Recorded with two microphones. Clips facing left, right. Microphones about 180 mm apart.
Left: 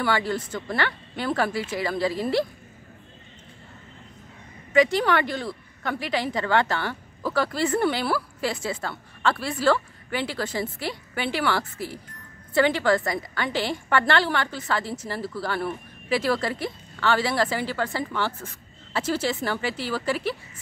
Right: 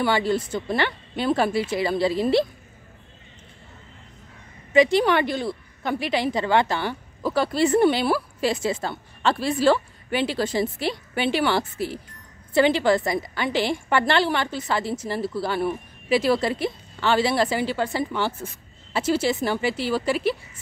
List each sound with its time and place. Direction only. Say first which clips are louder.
0.0 s a woman's voice: right 3 dB; 20° right (ahead or behind)
4.7 s a woman's voice: right 3 dB; 20° right (ahead or behind)